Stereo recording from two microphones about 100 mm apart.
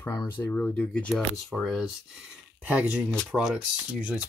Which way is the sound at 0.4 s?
15° left (ahead or behind).